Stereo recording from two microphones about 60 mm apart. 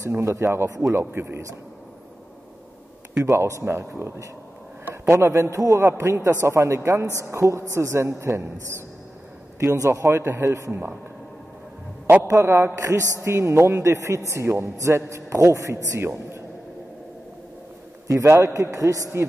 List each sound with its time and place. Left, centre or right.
0.2 s a man's voice: right
0.7 s a man's voice: right
0.9 s a man's voice: right
3.3 s a man's voice: right
9.6 s a man's voice: right
12.3 s a man's voice: right
12.7 s a man's voice: right
16.0 s a man's voice: right
18.0 s a man's voice: right